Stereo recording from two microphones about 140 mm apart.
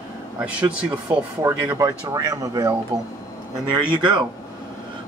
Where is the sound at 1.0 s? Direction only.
25° right (ahead or behind).